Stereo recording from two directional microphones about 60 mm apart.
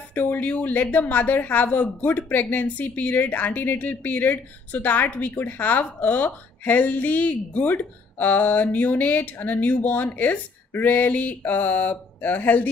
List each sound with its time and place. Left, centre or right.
0.1 s speech: left